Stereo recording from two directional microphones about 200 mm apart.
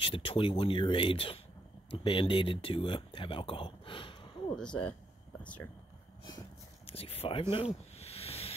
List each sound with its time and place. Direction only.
0.0 s speech: 25° left (ahead or behind)
4.6 s speech: 5° left (ahead or behind)
6.9 s a sound: 30° left (ahead or behind)